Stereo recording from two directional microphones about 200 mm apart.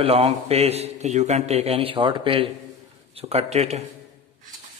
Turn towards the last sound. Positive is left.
turn(degrees=-30)  # may be behind; listen again after turning